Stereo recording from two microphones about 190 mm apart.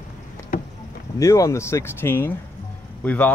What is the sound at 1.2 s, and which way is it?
Speech, 15° left (ahead or behind).